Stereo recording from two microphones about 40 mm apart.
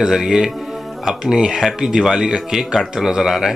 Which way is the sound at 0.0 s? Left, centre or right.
Centre.